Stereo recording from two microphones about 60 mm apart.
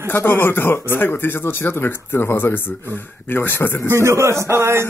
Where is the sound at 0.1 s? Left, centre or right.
Left.